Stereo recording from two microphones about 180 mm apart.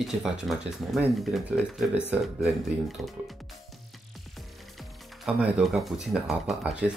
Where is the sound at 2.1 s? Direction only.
5° right (ahead or behind).